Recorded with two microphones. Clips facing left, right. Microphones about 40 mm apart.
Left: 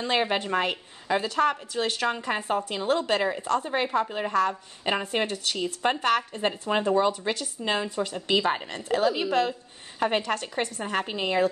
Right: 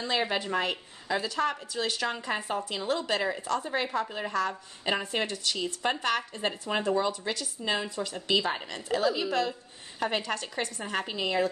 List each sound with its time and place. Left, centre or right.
0.0 s a woman's voice: left
6.6 s a woman's voice: centre